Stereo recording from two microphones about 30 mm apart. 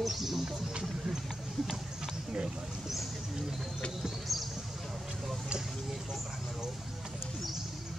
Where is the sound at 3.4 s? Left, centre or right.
Centre.